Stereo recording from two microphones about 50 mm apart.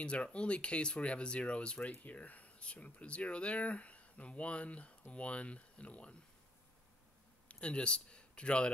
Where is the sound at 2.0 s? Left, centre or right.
Left.